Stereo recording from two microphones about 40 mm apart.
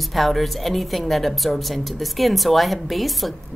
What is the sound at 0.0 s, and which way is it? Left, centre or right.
A woman's voice, centre.